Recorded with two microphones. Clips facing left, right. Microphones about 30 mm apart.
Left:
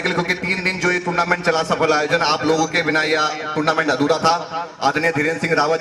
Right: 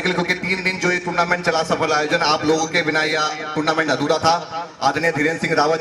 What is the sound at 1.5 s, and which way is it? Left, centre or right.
Speech, centre.